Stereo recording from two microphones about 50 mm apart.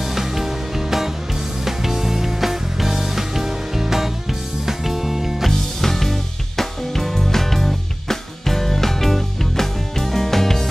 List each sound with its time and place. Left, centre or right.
0.0 s music: centre
5.5 s music: centre